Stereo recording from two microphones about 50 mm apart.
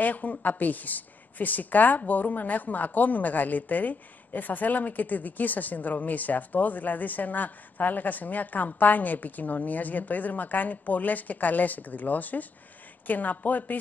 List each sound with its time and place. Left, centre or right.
0.0 s a woman's voice: left